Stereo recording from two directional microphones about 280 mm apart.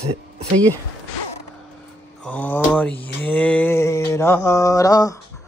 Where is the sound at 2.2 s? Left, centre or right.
Centre.